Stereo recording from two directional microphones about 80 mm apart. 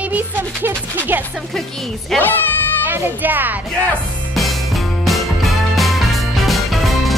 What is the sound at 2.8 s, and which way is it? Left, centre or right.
Speech, right.